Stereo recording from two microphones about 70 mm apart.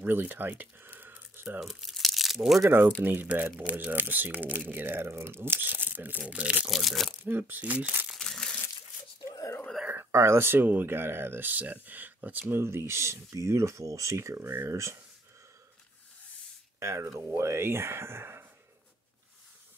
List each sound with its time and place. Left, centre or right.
0.0 s speech: right
1.6 s crumpling: centre
3.0 s speech: right
6.7 s speech: centre
7.2 s speech: right
8.2 s crumpling: centre
9.2 s a sound: left
10.1 s speech: right
12.5 s speech: right
14.7 s speech: right
16.8 s speech: right